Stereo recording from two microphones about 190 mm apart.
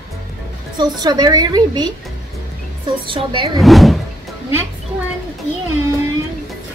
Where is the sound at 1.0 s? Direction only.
20° right (ahead or behind).